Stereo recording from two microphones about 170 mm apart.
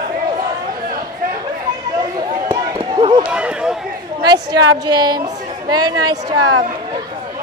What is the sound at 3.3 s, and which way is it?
Run, 5° right (ahead or behind).